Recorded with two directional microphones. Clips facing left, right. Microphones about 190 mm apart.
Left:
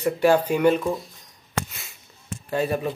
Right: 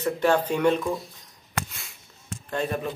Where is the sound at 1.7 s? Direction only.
Centre (ahead or behind).